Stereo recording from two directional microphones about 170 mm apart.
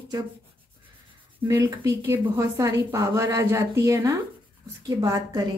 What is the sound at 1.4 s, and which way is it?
A woman's voice, 20° right (ahead or behind).